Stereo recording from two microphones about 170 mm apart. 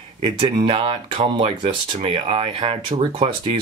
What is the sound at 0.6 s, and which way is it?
Speech, 35° right (ahead or behind).